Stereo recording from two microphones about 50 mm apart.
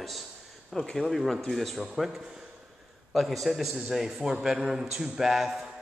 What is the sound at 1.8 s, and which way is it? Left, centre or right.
A man's voice, centre.